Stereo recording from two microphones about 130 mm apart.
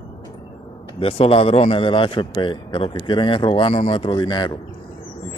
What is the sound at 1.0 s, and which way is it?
Speech, 45° left (ahead or behind).